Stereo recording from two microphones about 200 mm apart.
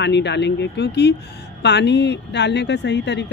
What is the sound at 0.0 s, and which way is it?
Speech, 60° left (ahead or behind).